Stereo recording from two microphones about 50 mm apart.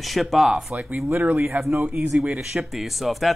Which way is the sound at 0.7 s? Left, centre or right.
Right.